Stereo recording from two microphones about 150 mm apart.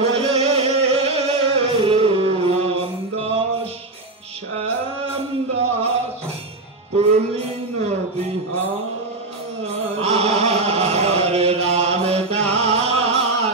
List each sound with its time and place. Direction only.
0.3 s music: 40° right (ahead or behind)
4.6 s a sound: 40° right (ahead or behind)
7.0 s music: 45° right (ahead or behind)
9.7 s chant: 45° right (ahead or behind)
12.5 s music: 40° right (ahead or behind)